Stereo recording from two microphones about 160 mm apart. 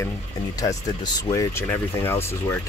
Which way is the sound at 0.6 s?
20° left (ahead or behind).